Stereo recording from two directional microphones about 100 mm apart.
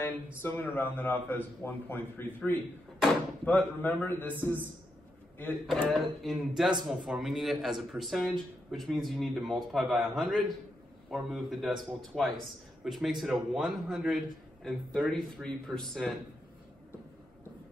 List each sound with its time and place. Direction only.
0.0 s a man's voice: 20° left (ahead or behind)
5.9 s a man's voice: centre (ahead or behind)